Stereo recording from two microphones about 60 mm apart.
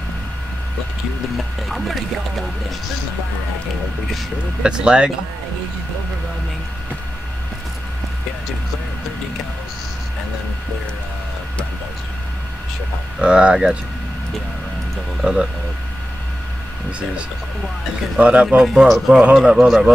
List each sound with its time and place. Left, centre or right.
1.6 s speech: centre
4.6 s speech: centre
13.2 s speech: centre
18.2 s a man's voice: right
18.6 s speech: centre